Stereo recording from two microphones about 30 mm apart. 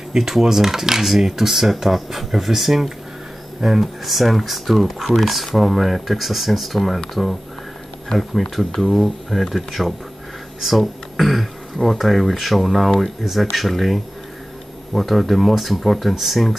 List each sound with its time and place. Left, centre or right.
0.3 s speech: centre
8.2 s speech: centre